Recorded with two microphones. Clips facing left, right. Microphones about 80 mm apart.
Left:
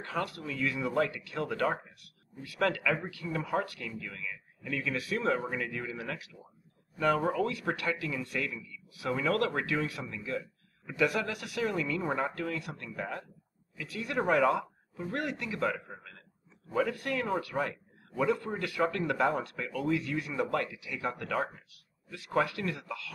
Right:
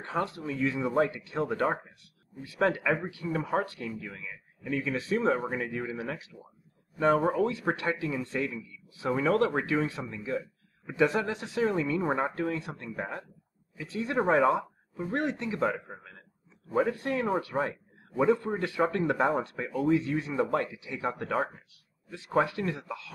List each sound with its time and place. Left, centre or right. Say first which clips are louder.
0.0 s a man's voice: right 3 dB; right
7.2 s speech: right 3 dB; centre
7.4 s a man's voice: right 3 dB; right